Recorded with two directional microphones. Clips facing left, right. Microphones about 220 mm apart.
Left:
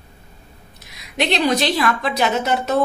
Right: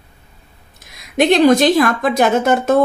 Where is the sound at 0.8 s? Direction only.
50° right (ahead or behind).